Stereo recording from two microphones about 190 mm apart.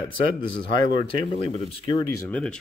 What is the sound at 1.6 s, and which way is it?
Speech, 25° left (ahead or behind).